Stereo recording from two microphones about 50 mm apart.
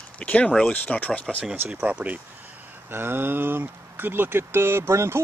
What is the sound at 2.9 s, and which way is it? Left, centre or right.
Speech, right.